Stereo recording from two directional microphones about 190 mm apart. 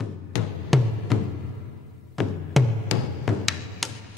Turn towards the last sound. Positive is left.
turn(degrees=0)  # may be behind; listen again after turning